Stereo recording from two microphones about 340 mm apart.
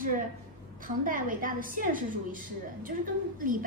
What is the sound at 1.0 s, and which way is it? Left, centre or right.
A woman's voice, right.